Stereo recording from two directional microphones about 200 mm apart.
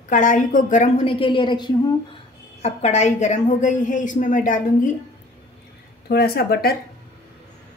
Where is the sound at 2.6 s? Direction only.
35° left (ahead or behind).